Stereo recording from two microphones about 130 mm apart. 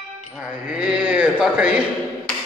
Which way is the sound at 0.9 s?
10° right (ahead or behind).